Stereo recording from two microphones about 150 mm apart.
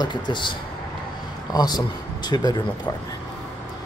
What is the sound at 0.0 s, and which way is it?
A man's voice, 30° left (ahead or behind).